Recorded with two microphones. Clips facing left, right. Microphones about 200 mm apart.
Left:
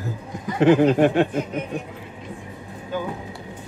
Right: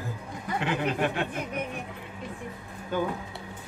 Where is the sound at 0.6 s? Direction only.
45° left (ahead or behind).